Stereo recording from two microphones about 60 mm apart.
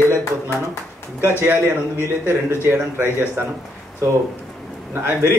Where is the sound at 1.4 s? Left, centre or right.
Right.